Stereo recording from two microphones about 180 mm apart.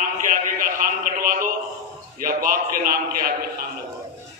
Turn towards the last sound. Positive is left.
turn(degrees=-55)  # may be behind; listen again after turning